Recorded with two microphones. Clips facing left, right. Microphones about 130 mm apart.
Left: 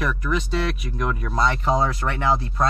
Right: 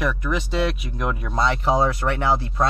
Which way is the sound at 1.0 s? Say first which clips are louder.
Left 2 dB; 5° right (ahead or behind).